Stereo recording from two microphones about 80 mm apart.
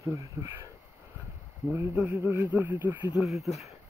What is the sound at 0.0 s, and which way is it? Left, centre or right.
Speech, right.